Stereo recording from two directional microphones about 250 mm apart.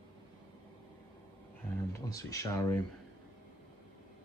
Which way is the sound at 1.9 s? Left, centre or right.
Centre.